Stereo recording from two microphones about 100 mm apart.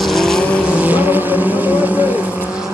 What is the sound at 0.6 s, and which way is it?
Vehicle, 15° right (ahead or behind).